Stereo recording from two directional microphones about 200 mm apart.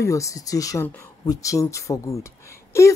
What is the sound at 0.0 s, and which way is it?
Speech, 15° left (ahead or behind).